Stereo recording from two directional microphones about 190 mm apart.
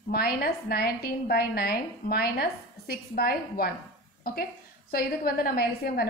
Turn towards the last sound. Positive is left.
turn(degrees=55)  # may be behind; listen again after turning